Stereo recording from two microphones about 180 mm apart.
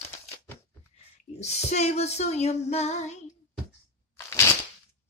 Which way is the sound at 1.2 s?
40° left (ahead or behind).